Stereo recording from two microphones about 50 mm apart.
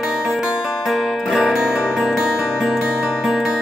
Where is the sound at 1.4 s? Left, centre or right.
Centre.